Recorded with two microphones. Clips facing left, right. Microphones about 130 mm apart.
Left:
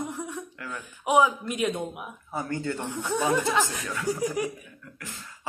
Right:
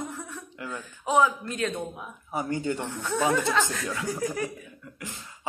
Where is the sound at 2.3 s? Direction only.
15° right (ahead or behind).